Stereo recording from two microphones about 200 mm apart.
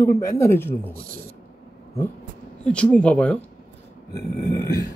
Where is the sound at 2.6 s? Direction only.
5° left (ahead or behind).